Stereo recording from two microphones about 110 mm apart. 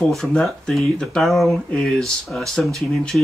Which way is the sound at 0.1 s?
5° left (ahead or behind).